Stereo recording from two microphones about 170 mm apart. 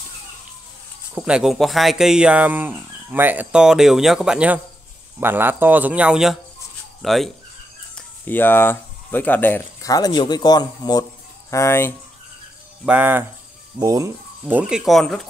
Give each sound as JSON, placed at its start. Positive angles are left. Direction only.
{"t": 1.1, "sound": "speech", "side_deg": -5}
{"t": 7.9, "sound": "speech", "side_deg": 10}
{"t": 12.8, "sound": "speech", "side_deg": -10}